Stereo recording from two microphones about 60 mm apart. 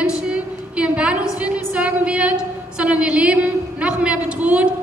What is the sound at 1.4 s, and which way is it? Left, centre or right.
A woman's voice, centre.